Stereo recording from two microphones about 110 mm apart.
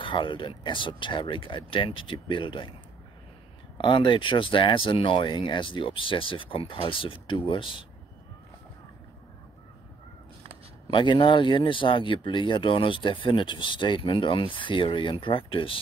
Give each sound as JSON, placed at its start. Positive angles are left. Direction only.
{"t": 0.0, "sound": "speech", "side_deg": 50}
{"t": 3.7, "sound": "speech", "side_deg": 50}
{"t": 10.9, "sound": "speech", "side_deg": 45}